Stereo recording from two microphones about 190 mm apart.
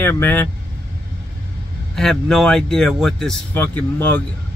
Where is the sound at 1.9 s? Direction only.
Centre (ahead or behind).